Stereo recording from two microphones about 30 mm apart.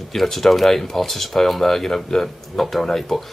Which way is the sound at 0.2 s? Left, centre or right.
Centre.